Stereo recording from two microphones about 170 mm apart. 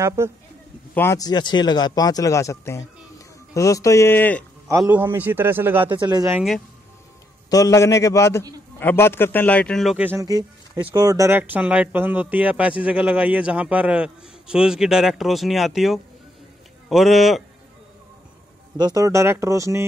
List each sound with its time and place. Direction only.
0.0 s speech: 15° right (ahead or behind)
0.9 s a man's voice: 15° left (ahead or behind)
4.6 s speech: 15° right (ahead or behind)
5.9 s speech: 25° right (ahead or behind)
7.4 s a man's voice: 20° left (ahead or behind); by 17.4 s centre (ahead or behind)
18.8 s speech: 20° right (ahead or behind)